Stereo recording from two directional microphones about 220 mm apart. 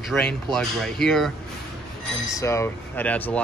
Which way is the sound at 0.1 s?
5° left (ahead or behind).